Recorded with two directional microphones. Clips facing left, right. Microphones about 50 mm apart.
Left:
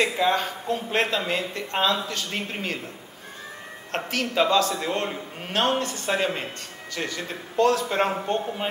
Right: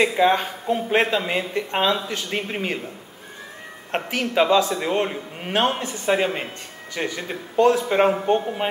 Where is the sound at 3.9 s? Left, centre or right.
Right.